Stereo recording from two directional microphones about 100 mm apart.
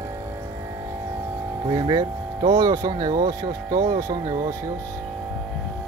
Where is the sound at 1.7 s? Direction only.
40° right (ahead or behind).